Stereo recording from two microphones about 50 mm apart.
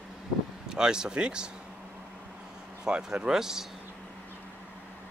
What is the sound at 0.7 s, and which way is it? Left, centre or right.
Speech, centre.